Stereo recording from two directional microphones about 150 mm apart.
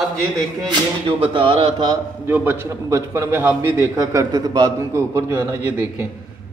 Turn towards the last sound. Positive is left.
turn(degrees=-15)  # may be behind; listen again after turning